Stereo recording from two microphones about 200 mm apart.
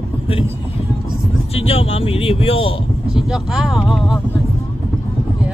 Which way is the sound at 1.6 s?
30° left (ahead or behind).